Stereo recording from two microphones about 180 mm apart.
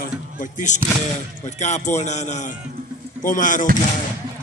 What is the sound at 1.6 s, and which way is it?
Music, 40° left (ahead or behind).